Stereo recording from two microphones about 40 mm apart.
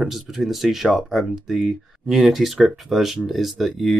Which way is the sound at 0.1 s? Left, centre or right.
Centre.